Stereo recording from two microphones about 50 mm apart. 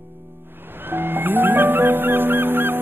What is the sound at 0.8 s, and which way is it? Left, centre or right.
Music, right.